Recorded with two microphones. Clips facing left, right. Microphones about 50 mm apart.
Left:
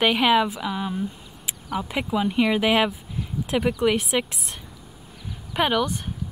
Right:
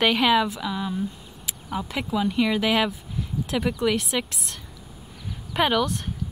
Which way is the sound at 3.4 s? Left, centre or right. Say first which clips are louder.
Left 3 dB; centre.